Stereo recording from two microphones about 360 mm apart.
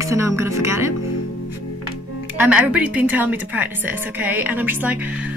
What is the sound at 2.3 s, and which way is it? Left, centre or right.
A woman's voice, centre.